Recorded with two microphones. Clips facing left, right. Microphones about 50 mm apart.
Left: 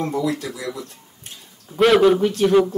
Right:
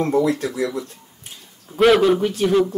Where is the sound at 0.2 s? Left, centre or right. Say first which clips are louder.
Right 4 dB; right.